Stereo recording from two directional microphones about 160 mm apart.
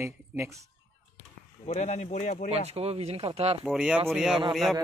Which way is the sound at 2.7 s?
40° right (ahead or behind).